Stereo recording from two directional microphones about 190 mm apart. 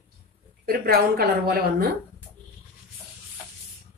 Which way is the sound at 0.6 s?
50° right (ahead or behind).